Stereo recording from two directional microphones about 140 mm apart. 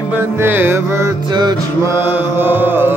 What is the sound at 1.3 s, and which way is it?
Music, 30° right (ahead or behind).